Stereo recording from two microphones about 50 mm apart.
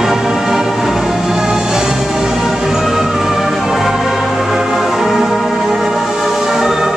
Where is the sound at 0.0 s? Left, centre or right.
Centre.